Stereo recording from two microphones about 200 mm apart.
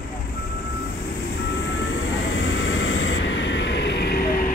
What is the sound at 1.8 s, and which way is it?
Vehicle, 65° left (ahead or behind).